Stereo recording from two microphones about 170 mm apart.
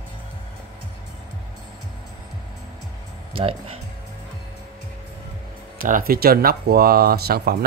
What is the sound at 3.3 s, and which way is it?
Music, 30° right (ahead or behind).